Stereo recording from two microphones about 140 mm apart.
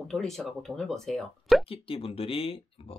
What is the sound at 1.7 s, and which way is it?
Speech, 40° left (ahead or behind).